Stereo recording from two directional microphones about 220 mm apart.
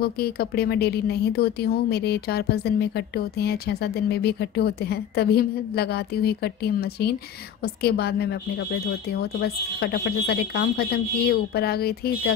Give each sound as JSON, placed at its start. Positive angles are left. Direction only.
{"t": 0.0, "sound": "speech", "side_deg": 45}